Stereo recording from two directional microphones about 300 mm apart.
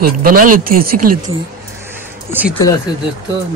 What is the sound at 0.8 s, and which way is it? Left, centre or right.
Speech, right.